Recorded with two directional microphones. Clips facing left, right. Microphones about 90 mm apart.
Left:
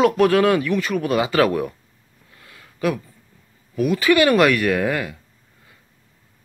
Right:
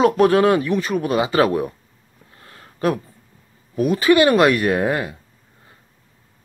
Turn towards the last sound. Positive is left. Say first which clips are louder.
# right 1 dB
turn(degrees=-30)  # may be behind; listen again after turning